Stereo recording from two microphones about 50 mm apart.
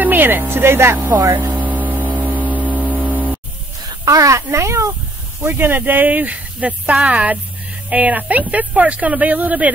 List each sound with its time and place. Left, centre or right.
0.0 s speech: right
1.4 s a sound: right
4.2 s speech: right
5.4 s speech: right